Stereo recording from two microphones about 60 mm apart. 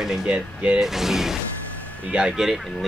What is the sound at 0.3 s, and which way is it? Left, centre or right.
Speech, right.